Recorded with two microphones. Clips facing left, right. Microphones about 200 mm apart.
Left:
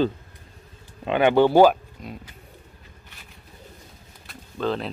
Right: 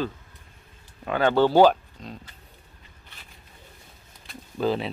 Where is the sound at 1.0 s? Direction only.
20° left (ahead or behind).